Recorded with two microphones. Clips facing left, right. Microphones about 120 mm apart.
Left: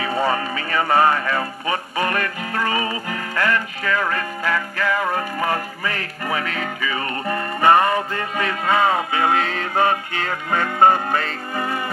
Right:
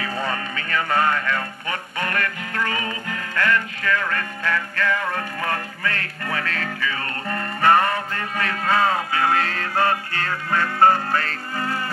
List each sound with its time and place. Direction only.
0.0 s music: 25° left (ahead or behind)